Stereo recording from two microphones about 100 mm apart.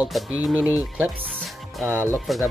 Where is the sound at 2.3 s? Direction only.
Centre (ahead or behind).